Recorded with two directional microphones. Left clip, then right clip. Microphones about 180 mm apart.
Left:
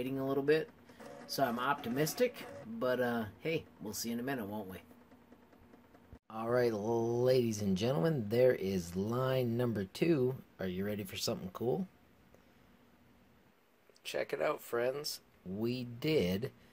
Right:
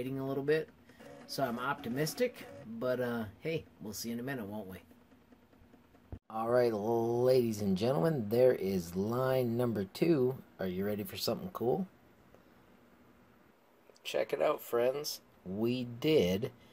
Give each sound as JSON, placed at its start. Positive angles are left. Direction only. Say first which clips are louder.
{"t": 0.0, "sound": "speech", "louder": "left 2 dB", "side_deg": -10}
{"t": 6.2, "sound": "speech", "louder": "right 3 dB", "side_deg": 0}
{"t": 14.0, "sound": "speech", "louder": "right 4 dB", "side_deg": -5}